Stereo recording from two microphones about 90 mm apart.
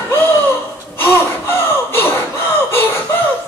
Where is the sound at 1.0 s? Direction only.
25° left (ahead or behind).